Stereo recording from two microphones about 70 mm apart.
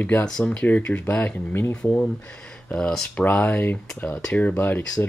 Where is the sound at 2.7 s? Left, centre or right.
Centre.